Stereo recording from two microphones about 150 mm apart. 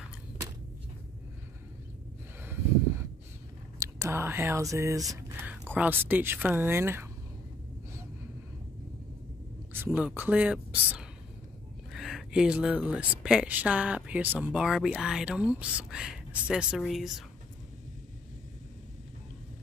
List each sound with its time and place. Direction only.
2.4 s a sound: 15° right (ahead or behind)
3.8 s speech: 20° right (ahead or behind)
5.5 s speech: 10° right (ahead or behind)
9.7 s speech: 15° right (ahead or behind)